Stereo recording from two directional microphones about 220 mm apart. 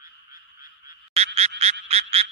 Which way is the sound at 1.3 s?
25° right (ahead or behind).